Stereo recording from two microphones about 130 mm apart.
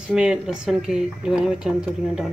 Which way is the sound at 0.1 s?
5° right (ahead or behind).